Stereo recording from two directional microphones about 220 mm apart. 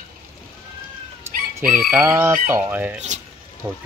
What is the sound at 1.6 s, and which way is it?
Chicken, 40° right (ahead or behind).